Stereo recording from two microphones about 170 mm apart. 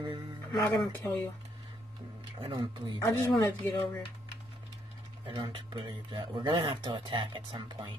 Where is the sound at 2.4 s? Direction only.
25° right (ahead or behind).